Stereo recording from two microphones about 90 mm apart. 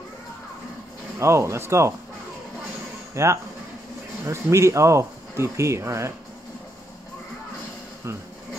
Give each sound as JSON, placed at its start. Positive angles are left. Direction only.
{"t": 1.2, "sound": "speech", "side_deg": -30}
{"t": 3.2, "sound": "speech", "side_deg": -35}